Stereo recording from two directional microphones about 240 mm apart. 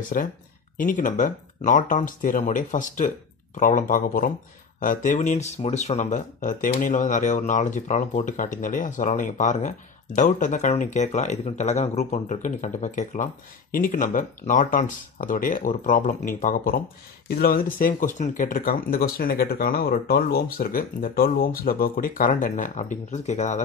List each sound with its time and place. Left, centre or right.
0.2 s speech: left